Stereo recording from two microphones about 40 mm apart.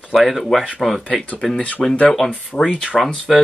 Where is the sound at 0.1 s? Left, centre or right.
Centre.